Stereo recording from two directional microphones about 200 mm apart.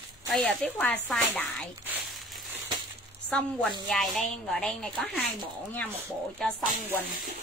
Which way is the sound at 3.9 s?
Centre (ahead or behind).